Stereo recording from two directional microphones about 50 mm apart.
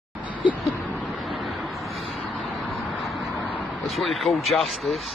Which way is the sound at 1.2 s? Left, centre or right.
Centre.